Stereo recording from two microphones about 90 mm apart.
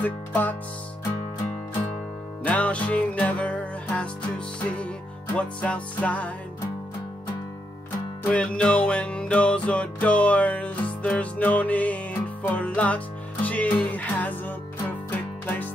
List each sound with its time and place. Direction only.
0.0 s music: 20° left (ahead or behind)
2.4 s music: 15° left (ahead or behind)
5.3 s music: 15° left (ahead or behind)
8.3 s music: 15° left (ahead or behind)